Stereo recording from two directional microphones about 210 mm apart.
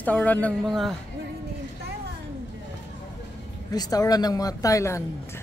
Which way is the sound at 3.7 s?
20° left (ahead or behind).